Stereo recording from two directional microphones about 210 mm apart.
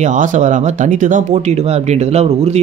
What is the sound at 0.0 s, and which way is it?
Speech, 35° right (ahead or behind).